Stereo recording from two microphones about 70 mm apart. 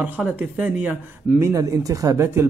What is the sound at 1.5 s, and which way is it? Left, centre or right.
Speech, right.